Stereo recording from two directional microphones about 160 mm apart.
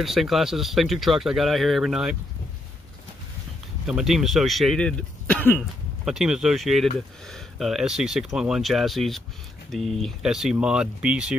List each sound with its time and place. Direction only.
0.0 s speech: centre (ahead or behind)
3.8 s speech: 5° right (ahead or behind)
6.0 s speech: 5° right (ahead or behind)